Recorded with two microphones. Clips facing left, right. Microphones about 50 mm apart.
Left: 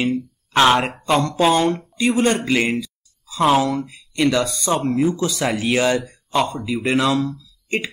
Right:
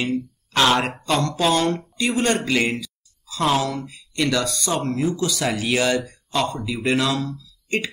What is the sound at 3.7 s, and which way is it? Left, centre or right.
Speech, centre.